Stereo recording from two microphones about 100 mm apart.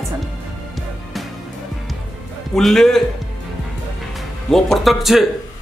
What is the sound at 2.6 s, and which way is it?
Speech, 5° left (ahead or behind).